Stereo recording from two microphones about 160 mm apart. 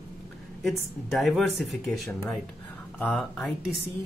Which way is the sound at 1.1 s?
Centre (ahead or behind).